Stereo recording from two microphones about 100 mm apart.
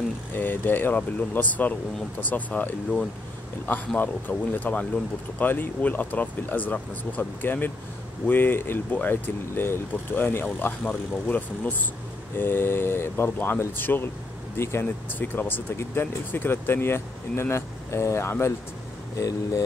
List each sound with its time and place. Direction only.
0.3 s speech: 20° left (ahead or behind)